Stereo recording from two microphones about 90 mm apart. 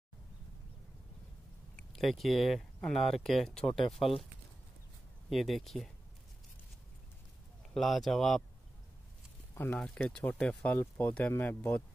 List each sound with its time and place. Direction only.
1.8 s speech: centre (ahead or behind)
5.3 s speech: centre (ahead or behind)
7.7 s speech: centre (ahead or behind)
9.8 s speech: 10° left (ahead or behind)